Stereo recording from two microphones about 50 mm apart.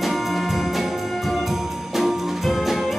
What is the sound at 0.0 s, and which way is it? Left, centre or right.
Music, centre.